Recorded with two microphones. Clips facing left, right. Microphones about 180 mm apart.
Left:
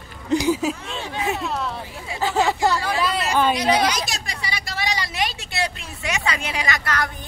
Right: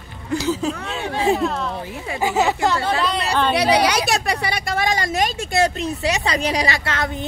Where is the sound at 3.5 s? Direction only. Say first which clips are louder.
Right 3 dB; 70° right (ahead or behind); by 6.8 s 35° right (ahead or behind).